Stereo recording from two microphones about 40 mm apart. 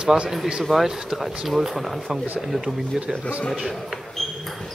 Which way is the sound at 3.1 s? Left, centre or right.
Centre.